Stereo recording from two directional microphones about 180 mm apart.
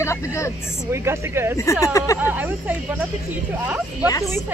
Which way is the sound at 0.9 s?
15° right (ahead or behind).